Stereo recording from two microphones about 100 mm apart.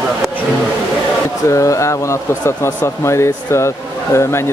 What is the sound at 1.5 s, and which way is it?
Speech, 30° left (ahead or behind).